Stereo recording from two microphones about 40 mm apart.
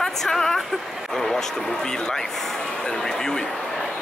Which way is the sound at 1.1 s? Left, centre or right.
Centre.